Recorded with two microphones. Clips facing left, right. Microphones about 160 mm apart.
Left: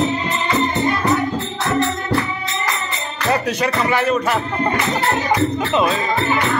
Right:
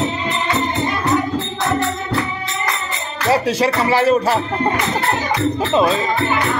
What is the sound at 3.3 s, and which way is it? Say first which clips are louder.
Music: right 3 dB; 30° right (ahead or behind).